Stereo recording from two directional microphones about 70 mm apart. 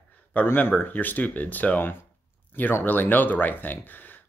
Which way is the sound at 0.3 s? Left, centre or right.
Left.